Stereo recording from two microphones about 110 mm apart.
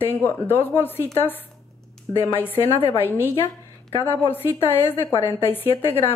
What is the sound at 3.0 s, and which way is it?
A woman's voice, 20° left (ahead or behind).